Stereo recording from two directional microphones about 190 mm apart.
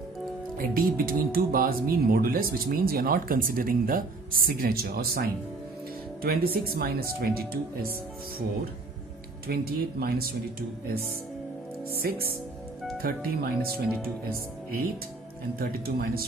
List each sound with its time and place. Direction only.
0.6 s speech: 50° right (ahead or behind)
9.5 s speech: 55° right (ahead or behind)
12.9 s speech: 50° right (ahead or behind)
15.6 s speech: 55° right (ahead or behind)